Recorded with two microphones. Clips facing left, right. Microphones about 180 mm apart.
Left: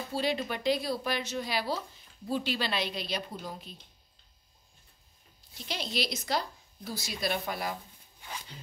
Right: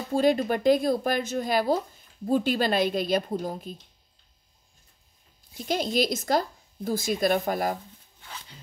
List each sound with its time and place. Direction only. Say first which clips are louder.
0.1 s speech: right 10 dB; 45° right (ahead or behind)
5.5 s speech: right 10 dB; 45° right (ahead or behind)
8.2 s a sound: left 1 dB; 15° left (ahead or behind)